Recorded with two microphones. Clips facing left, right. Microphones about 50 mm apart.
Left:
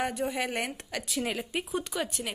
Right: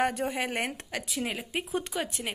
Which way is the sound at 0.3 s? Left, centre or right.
Right.